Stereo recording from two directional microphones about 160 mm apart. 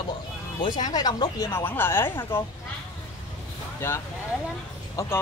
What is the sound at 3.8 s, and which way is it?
Speech, 15° left (ahead or behind).